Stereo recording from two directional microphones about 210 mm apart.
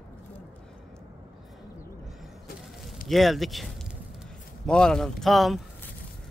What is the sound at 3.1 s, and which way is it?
Speech, centre (ahead or behind).